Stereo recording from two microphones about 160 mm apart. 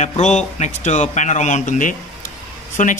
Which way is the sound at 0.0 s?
45° left (ahead or behind).